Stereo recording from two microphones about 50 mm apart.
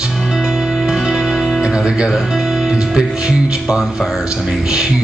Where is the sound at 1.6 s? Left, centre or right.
Centre.